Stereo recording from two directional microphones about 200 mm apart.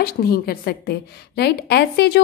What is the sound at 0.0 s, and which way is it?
A woman's voice, 50° left (ahead or behind).